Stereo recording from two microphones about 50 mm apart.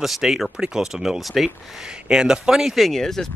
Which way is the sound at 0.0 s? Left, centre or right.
Centre.